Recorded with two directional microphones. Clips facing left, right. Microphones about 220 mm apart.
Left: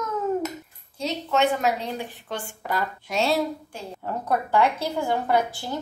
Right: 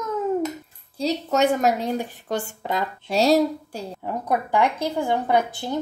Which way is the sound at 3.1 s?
40° right (ahead or behind).